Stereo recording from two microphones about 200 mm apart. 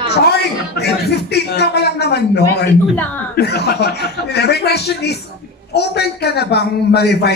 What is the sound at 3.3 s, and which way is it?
A man's voice, 55° left (ahead or behind).